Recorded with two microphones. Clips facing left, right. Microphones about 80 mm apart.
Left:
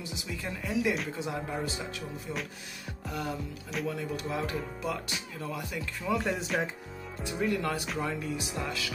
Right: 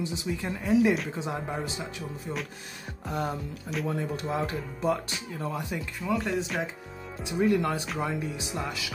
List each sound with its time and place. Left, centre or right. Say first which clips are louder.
0.0 s speech: right 6 dB; right
0.7 s speech: right 7 dB; centre
1.1 s speech: right 2 dB; right
3.1 s speech: right 4 dB; right
5.9 s speech: right 1 dB; centre
7.3 s speech: right 5 dB; right